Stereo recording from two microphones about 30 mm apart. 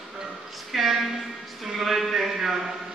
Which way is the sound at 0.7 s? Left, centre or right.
Centre.